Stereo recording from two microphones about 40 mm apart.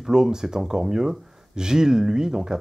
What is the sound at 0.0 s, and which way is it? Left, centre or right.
Speech, centre.